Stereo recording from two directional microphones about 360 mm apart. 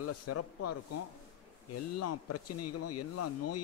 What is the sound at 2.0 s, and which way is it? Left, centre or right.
Speech, left.